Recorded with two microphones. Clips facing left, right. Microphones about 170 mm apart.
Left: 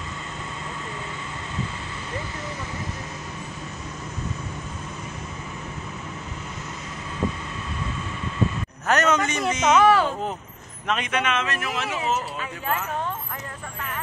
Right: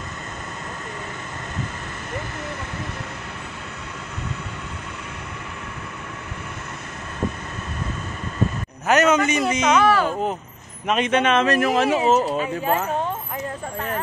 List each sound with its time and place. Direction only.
8.8 s a man's voice: 5° right (ahead or behind)
9.8 s speech: 20° left (ahead or behind)
10.9 s speech: 25° right (ahead or behind)